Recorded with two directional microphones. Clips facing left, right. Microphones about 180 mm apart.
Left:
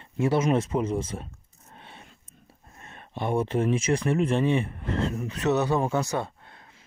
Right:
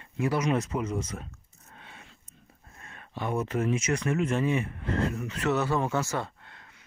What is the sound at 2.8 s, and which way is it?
Speech, 25° left (ahead or behind).